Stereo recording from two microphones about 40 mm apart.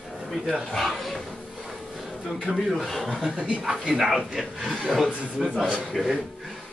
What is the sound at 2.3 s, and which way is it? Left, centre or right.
Speech, centre.